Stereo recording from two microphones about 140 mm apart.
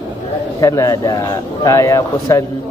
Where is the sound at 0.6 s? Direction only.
25° left (ahead or behind).